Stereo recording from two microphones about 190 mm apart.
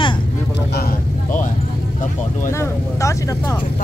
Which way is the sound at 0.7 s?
45° left (ahead or behind).